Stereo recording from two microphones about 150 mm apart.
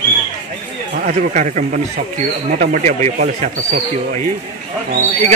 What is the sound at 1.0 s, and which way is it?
Speech, 60° right (ahead or behind).